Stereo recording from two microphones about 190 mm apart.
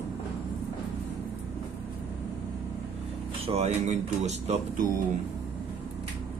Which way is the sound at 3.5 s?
35° right (ahead or behind).